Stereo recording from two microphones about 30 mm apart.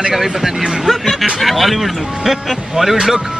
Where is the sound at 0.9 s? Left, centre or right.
Centre.